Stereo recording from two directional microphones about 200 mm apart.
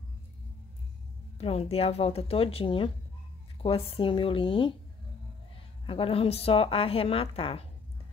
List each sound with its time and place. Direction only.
1.4 s a woman's voice: 30° left (ahead or behind)
5.9 s a woman's voice: 30° left (ahead or behind)